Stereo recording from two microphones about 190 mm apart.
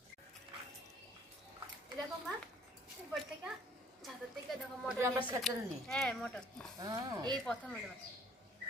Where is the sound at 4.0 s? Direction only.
Centre (ahead or behind).